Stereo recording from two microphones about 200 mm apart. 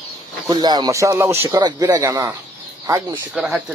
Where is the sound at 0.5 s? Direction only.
20° right (ahead or behind).